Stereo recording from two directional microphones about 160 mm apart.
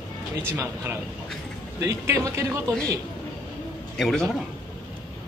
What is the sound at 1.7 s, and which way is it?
Speech, 20° right (ahead or behind).